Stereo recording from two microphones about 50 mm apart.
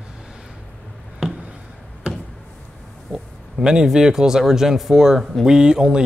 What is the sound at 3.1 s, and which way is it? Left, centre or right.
Speech, centre.